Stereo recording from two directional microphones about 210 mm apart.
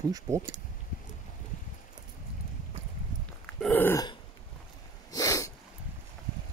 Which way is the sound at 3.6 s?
10° left (ahead or behind).